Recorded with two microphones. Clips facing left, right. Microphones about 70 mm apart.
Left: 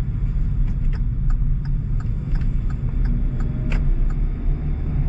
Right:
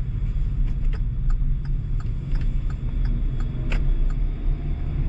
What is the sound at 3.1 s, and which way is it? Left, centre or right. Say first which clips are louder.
Vehicle: left 5 dB; centre.